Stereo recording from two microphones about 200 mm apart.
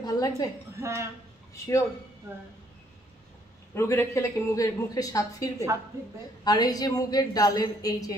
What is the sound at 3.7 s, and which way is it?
A woman's voice, 15° left (ahead or behind).